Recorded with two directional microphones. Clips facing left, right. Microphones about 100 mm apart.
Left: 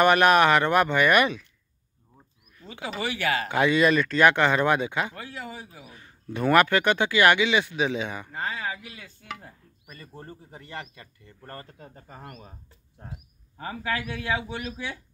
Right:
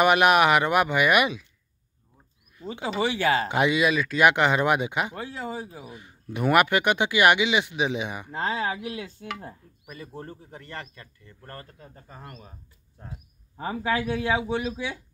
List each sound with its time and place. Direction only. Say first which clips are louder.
0.0 s speech: even; 10° right (ahead or behind)
2.6 s a man's voice: right 5 dB; 30° right (ahead or behind)
3.7 s speech: left 2 dB; 5° right (ahead or behind)
8.3 s speech: right 5 dB; 90° right
9.8 s speech: right 4 dB; 5° right (ahead or behind); by 12.4 s 30° left (ahead or behind)
13.6 s a man's voice: right 4 dB; 20° right (ahead or behind)